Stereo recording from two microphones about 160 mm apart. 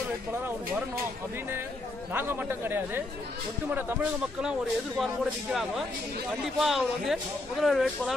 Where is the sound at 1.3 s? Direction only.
15° right (ahead or behind).